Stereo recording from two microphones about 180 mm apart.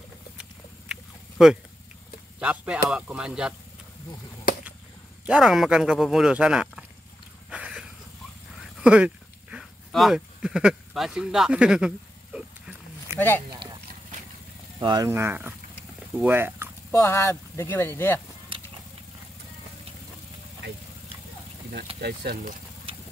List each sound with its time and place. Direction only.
1.4 s speech: 5° right (ahead or behind)
5.2 s speech: 5° right (ahead or behind)
7.4 s a sound: 5° right (ahead or behind)
8.8 s a sound: 5° right (ahead or behind)
14.8 s speech: 25° right (ahead or behind)
15.0 s speech: 10° right (ahead or behind)
16.9 s speech: 15° left (ahead or behind)
22.0 s speech: 55° right (ahead or behind)